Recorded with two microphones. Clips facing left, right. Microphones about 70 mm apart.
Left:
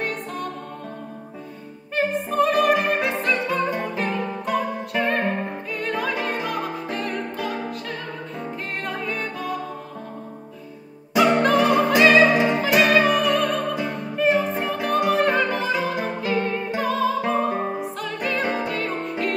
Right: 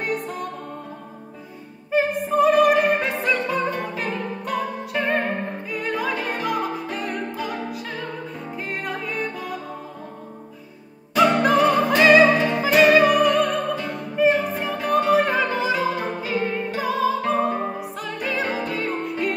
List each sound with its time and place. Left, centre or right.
0.0 s music: centre
1.9 s opera: centre
3.8 s music: centre
11.1 s opera: centre
12.3 s music: centre
12.9 s opera: centre
14.3 s music: centre
16.3 s music: centre